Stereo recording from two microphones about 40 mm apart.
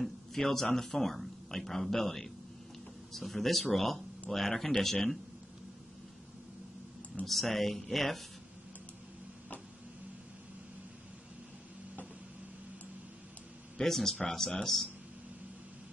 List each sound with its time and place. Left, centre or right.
0.0 s a sound: centre
0.7 s speech: centre
7.2 s speech: centre
13.7 s speech: centre